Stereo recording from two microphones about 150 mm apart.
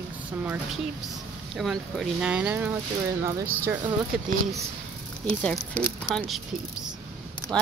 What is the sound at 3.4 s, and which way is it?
Speech, 75° right (ahead or behind).